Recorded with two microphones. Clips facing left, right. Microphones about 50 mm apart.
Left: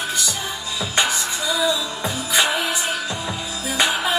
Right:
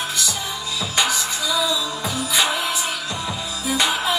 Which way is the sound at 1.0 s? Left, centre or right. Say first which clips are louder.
Even; left.